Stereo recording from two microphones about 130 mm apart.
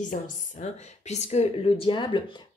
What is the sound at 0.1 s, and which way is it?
Speech, 65° left (ahead or behind).